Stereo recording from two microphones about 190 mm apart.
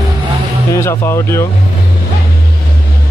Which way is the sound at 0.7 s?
15° left (ahead or behind).